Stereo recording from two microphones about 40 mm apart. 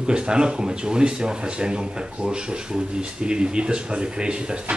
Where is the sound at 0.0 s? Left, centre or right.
Right.